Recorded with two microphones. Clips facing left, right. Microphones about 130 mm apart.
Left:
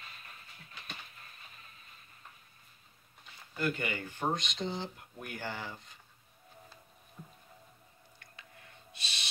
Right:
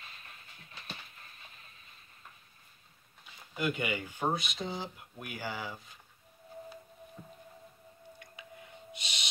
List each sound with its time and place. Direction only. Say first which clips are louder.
3.5 s speech: right 1 dB; 15° right (ahead or behind)
8.2 s owl: right 4 dB; 15° right (ahead or behind)